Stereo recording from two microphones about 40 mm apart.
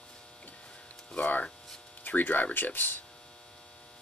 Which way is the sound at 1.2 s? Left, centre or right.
Left.